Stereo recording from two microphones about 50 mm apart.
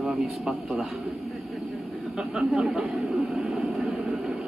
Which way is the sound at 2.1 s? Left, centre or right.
Centre.